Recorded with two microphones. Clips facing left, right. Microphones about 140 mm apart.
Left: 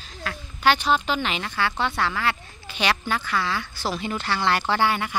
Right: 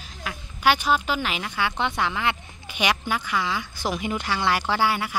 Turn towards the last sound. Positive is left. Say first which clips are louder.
# left 1 dB
turn(degrees=-5)  # may be behind; listen again after turning